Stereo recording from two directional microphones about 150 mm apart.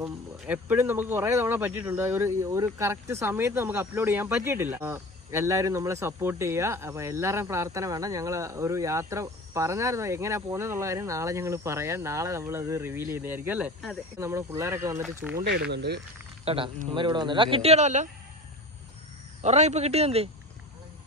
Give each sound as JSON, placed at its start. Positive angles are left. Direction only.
{"t": 0.0, "sound": "speech", "side_deg": -15}
{"t": 15.4, "sound": "speech", "side_deg": -90}
{"t": 16.4, "sound": "a man's voice", "side_deg": -35}
{"t": 19.4, "sound": "a man's voice", "side_deg": -50}